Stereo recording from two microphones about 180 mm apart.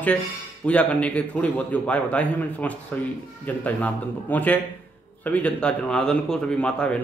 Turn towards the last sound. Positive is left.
turn(degrees=5)  # may be behind; listen again after turning